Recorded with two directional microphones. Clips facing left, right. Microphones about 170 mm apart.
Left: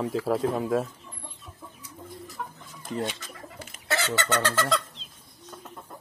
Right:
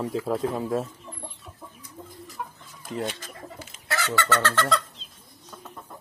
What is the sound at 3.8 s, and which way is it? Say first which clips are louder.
Fowl: right 1 dB; 25° left (ahead or behind).